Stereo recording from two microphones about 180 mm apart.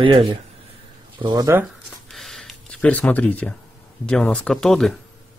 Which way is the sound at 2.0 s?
Centre (ahead or behind).